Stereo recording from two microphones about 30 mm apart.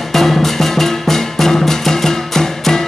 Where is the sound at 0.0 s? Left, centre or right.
Centre.